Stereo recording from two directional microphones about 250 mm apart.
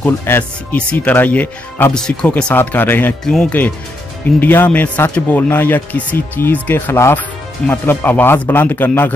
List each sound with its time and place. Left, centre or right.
0.0 s speech: centre